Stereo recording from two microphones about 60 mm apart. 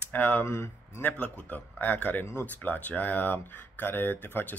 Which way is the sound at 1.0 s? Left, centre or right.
Left.